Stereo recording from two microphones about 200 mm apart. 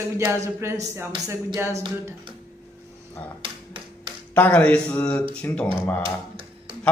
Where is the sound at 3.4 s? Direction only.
25° right (ahead or behind).